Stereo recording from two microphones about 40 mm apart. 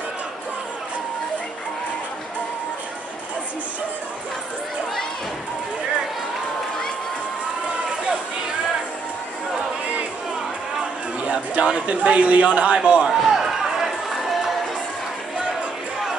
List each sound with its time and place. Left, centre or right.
10.8 s a sound: right
11.8 s a man's voice: right
13.0 s run: centre